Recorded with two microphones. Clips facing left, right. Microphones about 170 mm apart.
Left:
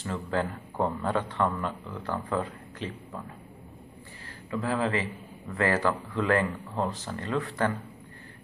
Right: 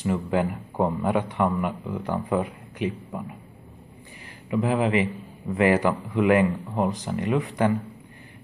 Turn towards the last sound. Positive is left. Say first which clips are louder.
# right 5 dB
turn(degrees=-15)  # may be behind; listen again after turning